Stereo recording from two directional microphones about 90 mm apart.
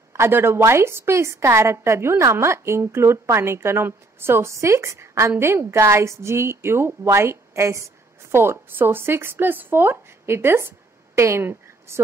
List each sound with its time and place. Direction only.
0.1 s a woman's voice: 30° right (ahead or behind)